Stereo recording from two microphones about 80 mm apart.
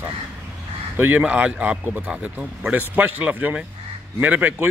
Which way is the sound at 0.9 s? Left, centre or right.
Right.